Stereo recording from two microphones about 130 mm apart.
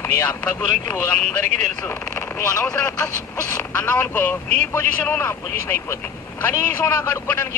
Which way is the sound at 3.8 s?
15° left (ahead or behind).